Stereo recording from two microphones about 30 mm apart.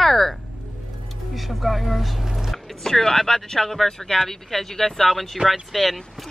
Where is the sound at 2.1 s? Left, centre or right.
Centre.